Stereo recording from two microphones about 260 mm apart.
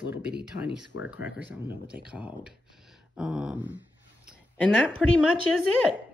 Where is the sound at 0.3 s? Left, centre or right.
Right.